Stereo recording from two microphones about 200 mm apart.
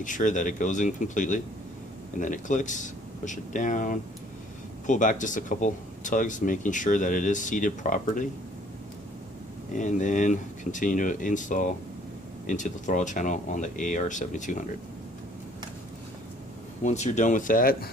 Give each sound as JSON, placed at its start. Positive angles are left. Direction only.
{"t": 0.0, "sound": "speech", "side_deg": 40}
{"t": 9.8, "sound": "speech", "side_deg": 40}
{"t": 16.8, "sound": "speech", "side_deg": 35}